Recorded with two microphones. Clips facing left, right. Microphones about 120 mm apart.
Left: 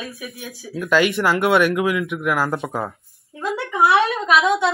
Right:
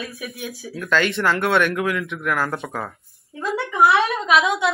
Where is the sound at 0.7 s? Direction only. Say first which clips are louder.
Left 3 dB; 10° left (ahead or behind).